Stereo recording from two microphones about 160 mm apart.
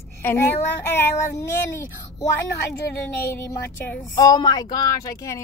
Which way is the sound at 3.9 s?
20° left (ahead or behind).